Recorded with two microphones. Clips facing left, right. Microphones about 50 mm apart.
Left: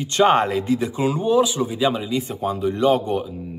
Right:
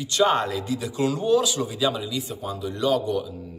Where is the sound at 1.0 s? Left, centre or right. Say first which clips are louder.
Left 1 dB; left.